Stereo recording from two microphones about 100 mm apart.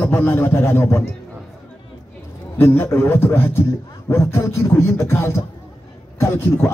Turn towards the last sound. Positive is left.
turn(degrees=25)  # may be behind; listen again after turning